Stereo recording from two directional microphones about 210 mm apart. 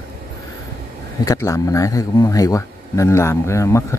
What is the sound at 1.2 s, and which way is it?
Speech, 15° left (ahead or behind).